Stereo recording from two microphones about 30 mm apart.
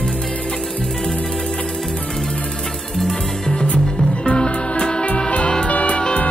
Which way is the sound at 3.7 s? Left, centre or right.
Left.